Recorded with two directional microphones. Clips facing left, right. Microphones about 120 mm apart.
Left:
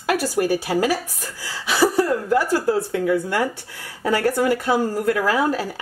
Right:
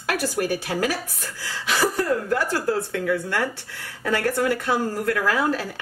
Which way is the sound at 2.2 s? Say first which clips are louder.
Left 4 dB; 15° left (ahead or behind).